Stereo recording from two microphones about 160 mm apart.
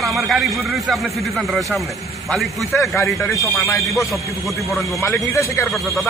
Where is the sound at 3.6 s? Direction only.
20° left (ahead or behind).